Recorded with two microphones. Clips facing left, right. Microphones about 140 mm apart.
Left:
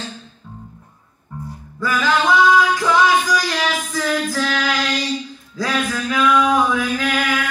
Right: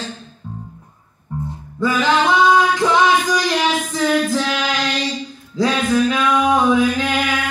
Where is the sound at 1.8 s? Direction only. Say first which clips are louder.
Right 3 dB; 20° right (ahead or behind).